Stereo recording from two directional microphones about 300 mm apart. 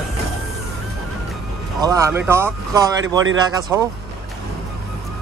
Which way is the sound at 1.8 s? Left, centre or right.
Centre.